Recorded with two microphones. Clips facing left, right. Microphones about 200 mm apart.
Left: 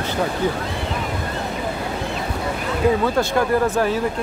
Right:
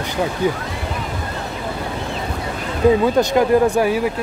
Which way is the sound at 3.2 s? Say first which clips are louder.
Right 4 dB; 15° right (ahead or behind).